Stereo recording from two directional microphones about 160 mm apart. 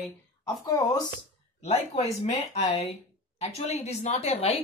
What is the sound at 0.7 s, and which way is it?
Speech, 25° left (ahead or behind).